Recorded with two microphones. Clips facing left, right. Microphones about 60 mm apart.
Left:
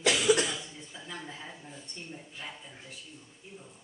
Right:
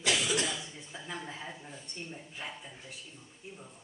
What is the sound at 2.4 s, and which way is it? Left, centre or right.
Speech, centre.